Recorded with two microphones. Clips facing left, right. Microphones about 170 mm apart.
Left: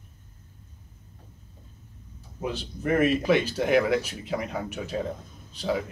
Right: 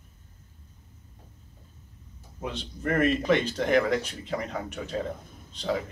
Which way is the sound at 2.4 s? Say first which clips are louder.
Left 3 dB; 5° left (ahead or behind).